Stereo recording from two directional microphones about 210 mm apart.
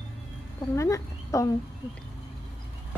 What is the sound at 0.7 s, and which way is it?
Speech, 15° left (ahead or behind).